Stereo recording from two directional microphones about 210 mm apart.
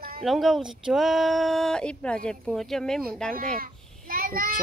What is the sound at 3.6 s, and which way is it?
Child singing, 45° right (ahead or behind).